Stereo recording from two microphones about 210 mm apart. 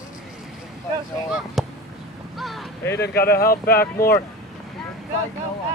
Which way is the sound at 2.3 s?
Centre (ahead or behind).